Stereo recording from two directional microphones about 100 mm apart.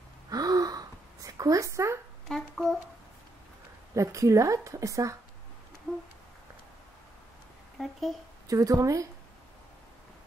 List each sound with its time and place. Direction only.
0.3 s a sound: 40° right (ahead or behind)
2.2 s speech: 5° left (ahead or behind)
3.9 s a woman's voice: 30° right (ahead or behind)
7.8 s speech: 5° left (ahead or behind)
8.5 s a woman's voice: 35° right (ahead or behind)